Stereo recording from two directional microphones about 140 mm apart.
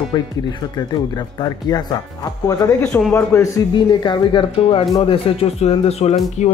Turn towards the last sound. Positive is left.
turn(degrees=50)  # may be behind; listen again after turning